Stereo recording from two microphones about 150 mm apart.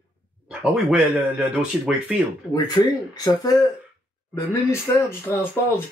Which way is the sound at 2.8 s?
30° left (ahead or behind).